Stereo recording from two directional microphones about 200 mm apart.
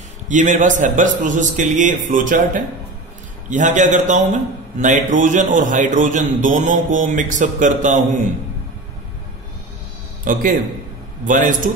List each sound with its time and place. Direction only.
0.3 s a man's voice: 40° right (ahead or behind)
10.3 s a man's voice: 40° right (ahead or behind)